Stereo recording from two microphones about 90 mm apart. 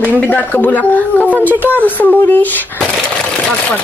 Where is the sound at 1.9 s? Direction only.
20° left (ahead or behind).